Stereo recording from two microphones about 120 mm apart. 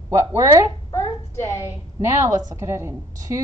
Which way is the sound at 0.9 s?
25° left (ahead or behind).